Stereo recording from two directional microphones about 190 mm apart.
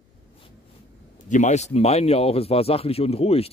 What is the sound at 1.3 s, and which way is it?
Speech, 40° left (ahead or behind).